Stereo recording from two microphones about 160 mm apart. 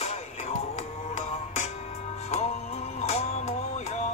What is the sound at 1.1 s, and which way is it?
Music, 45° left (ahead or behind).